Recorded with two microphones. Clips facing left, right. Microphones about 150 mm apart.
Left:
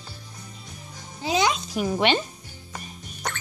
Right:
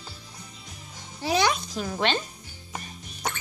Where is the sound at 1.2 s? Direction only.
15° left (ahead or behind).